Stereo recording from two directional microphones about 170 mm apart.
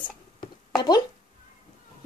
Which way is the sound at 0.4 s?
25° left (ahead or behind).